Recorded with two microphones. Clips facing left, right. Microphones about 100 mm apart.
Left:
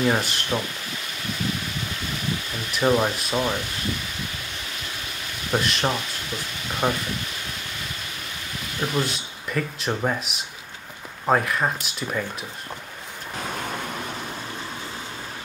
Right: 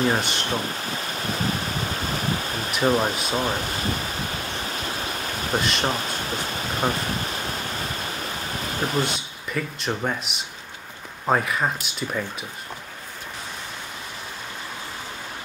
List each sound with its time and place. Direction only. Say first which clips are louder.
0.4 s a sound: right 1 dB; 35° right (ahead or behind)
3.3 s pink noise: even; 40° right (ahead or behind)
5.6 s speech: right 2 dB; centre (ahead or behind)
5.9 s insect: right 1 dB; 40° right (ahead or behind)
9.0 s speech: right 1 dB; centre (ahead or behind)